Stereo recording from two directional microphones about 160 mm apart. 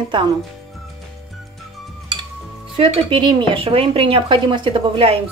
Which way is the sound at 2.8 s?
30° right (ahead or behind).